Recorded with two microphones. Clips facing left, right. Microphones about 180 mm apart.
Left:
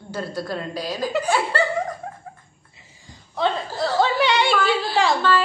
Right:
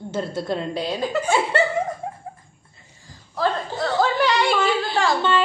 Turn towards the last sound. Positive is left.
turn(degrees=-25)  # may be behind; listen again after turning